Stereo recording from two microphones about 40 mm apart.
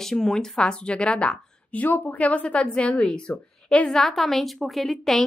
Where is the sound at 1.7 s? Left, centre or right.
Left.